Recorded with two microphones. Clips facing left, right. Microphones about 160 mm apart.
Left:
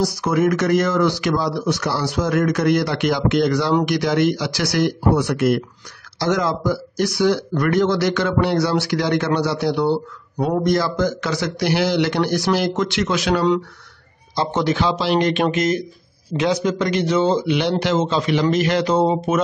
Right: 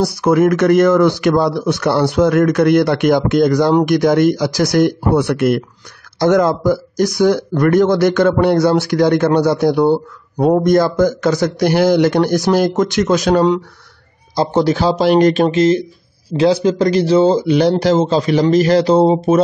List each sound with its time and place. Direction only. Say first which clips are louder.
0.0 s a man's voice: right 6 dB; 55° right (ahead or behind); by 19.4 s 35° right (ahead or behind)